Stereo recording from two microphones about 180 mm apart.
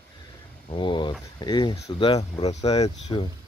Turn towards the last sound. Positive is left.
turn(degrees=30)  # may be behind; listen again after turning